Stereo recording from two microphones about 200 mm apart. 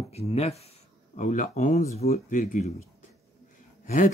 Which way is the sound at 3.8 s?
40° left (ahead or behind).